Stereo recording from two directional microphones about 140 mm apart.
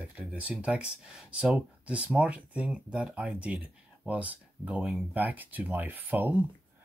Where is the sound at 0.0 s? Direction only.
10° right (ahead or behind).